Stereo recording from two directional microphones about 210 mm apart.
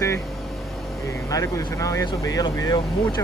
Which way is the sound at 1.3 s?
15° left (ahead or behind).